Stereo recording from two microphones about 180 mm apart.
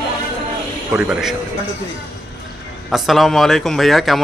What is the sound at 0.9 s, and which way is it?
Speech, 5° right (ahead or behind).